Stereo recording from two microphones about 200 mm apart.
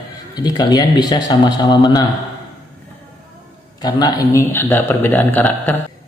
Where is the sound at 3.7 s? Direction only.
20° left (ahead or behind).